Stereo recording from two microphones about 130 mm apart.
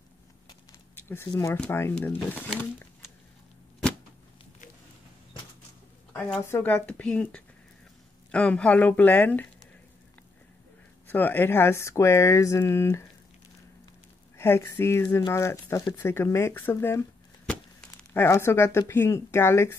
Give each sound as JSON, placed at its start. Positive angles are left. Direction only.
{"t": 0.9, "sound": "a sound", "side_deg": 15}
{"t": 1.7, "sound": "speech", "side_deg": 20}
{"t": 6.4, "sound": "speech", "side_deg": 15}
{"t": 11.1, "sound": "speech", "side_deg": 15}
{"t": 14.3, "sound": "speech", "side_deg": 20}